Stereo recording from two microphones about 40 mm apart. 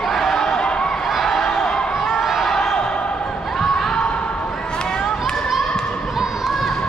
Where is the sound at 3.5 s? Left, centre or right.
Centre.